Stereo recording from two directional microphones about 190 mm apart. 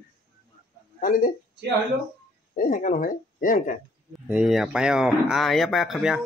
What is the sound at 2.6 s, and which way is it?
Speech, 45° left (ahead or behind).